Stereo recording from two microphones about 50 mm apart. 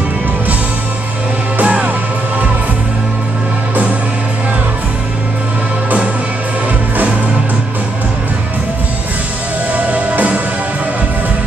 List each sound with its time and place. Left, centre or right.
1.6 s music: right
9.8 s music: right